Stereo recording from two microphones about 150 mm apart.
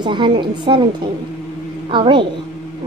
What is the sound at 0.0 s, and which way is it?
Speech, 30° right (ahead or behind).